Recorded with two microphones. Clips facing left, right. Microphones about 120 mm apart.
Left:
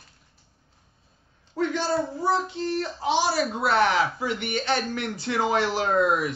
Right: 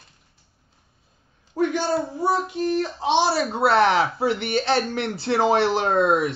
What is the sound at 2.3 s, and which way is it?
Speech, 10° right (ahead or behind).